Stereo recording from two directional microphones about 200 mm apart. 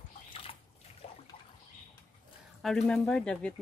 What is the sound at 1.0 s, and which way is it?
Water, 30° left (ahead or behind).